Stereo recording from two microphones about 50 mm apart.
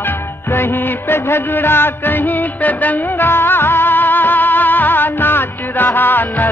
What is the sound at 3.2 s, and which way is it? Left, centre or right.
Music, left.